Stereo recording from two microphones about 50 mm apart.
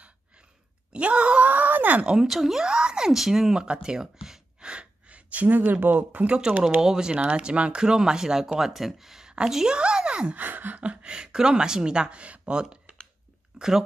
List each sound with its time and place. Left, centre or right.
0.9 s groan: right
2.2 s speech: centre; by 6.3 s right
6.8 s a woman's voice: centre
9.8 s a sound: centre
10.3 s a woman's voice: right; by 13.8 s centre